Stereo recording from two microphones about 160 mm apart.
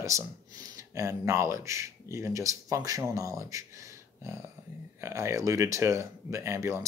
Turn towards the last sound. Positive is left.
turn(degrees=-20)  # may be behind; listen again after turning